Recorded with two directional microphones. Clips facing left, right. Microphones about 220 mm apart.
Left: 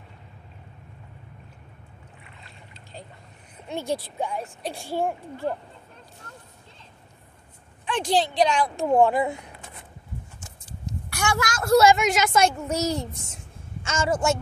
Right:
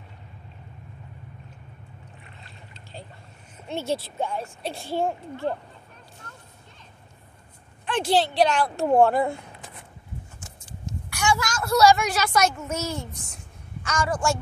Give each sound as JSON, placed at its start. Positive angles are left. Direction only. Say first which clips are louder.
{"t": 3.9, "sound": "a woman's voice", "louder": "right 1 dB", "side_deg": 0}
{"t": 4.7, "sound": "a woman's voice", "louder": "right 1 dB", "side_deg": 10}
{"t": 7.8, "sound": "speech", "louder": "right 1 dB", "side_deg": -5}
{"t": 9.1, "sound": "a woman's voice", "louder": "right 1 dB", "side_deg": 5}
{"t": 11.2, "sound": "a woman's voice", "louder": "right 1 dB", "side_deg": 60}
{"t": 11.7, "sound": "a woman's voice", "louder": "left 2 dB", "side_deg": 20}
{"t": 12.4, "sound": "a child's voice", "louder": "left 3 dB", "side_deg": 35}